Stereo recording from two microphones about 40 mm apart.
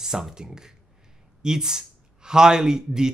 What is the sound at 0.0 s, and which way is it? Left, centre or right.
A man's voice, centre.